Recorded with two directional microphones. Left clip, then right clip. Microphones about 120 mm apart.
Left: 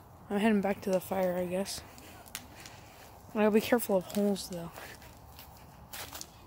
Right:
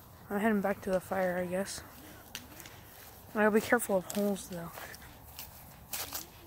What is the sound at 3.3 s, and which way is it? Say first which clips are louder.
Speech: even; 25° left (ahead or behind).